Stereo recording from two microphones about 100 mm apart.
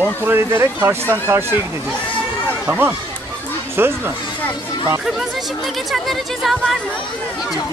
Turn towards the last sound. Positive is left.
turn(degrees=0)  # may be behind; listen again after turning